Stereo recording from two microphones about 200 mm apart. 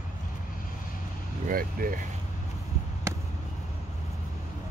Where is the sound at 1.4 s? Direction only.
45° right (ahead or behind).